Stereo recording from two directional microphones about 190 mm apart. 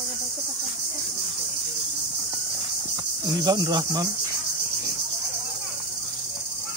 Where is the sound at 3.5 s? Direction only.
20° right (ahead or behind).